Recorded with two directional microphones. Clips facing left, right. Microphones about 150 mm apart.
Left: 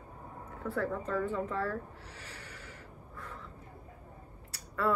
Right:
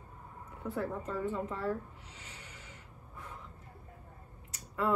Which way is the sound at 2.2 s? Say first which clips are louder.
Left 2 dB; 15° right (ahead or behind).